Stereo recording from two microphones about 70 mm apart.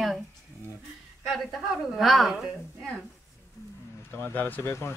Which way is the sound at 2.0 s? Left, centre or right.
Centre.